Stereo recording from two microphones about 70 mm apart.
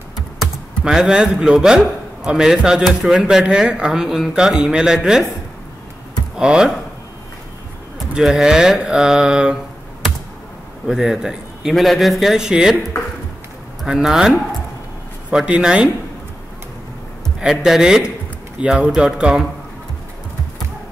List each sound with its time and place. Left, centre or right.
0.8 s speech: centre
6.3 s speech: centre
8.1 s speech: centre
10.9 s a man's voice: centre
11.7 s a man's voice: centre
13.8 s speech: centre
15.3 s speech: centre
17.4 s speech: centre